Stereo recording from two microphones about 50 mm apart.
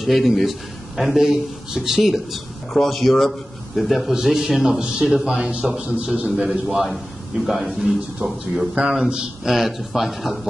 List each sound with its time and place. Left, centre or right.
0.0 s speech: centre
4.7 s a man's voice: centre
6.3 s speech: centre
8.7 s a man's voice: centre